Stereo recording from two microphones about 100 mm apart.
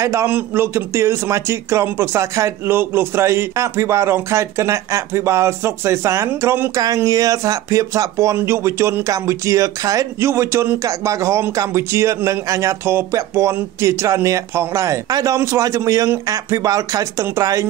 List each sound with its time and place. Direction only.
0.0 s speech: 30° right (ahead or behind)
7.1 s speech: 35° right (ahead or behind)